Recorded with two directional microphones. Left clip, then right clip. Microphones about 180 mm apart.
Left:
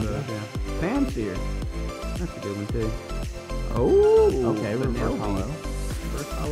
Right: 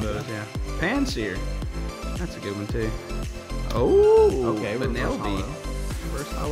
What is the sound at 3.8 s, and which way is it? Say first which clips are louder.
Speech: right 1 dB; centre (ahead or behind).